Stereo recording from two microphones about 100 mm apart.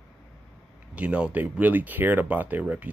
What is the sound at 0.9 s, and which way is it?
Speech, 10° right (ahead or behind).